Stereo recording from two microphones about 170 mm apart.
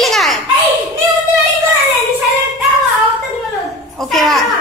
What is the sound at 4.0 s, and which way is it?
Speech, centre (ahead or behind).